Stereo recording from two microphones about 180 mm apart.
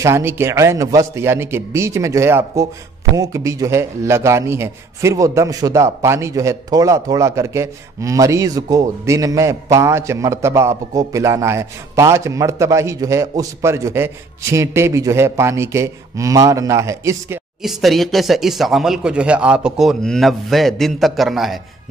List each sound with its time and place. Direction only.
0.0 s a man's voice: 15° right (ahead or behind)
17.6 s speech: centre (ahead or behind)